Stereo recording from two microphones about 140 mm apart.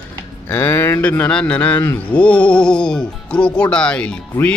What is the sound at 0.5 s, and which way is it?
Speech, 15° left (ahead or behind).